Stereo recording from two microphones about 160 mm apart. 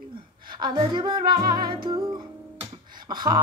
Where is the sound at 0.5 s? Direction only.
25° right (ahead or behind).